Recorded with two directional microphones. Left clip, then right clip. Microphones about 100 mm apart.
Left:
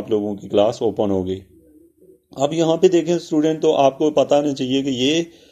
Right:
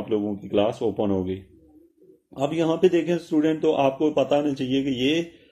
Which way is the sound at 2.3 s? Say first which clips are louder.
Left 6 dB; 30° left (ahead or behind).